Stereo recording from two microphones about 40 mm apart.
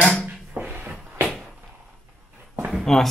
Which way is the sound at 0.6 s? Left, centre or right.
Right.